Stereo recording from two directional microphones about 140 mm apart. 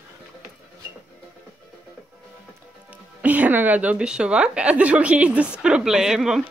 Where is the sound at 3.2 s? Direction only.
10° right (ahead or behind).